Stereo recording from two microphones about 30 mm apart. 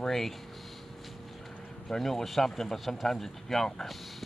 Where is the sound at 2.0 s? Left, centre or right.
Centre.